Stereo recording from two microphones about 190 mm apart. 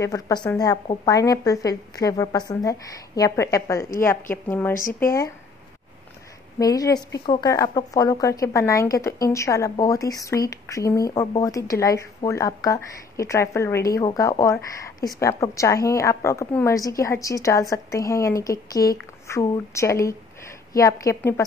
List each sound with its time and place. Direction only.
0.0 s speech: 20° left (ahead or behind)
6.6 s a woman's voice: 20° left (ahead or behind)